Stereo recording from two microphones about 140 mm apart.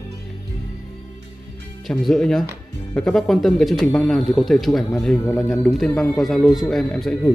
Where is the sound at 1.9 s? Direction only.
5° left (ahead or behind).